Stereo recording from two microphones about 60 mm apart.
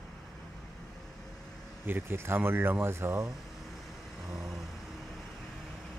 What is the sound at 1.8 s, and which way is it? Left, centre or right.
Speech, right.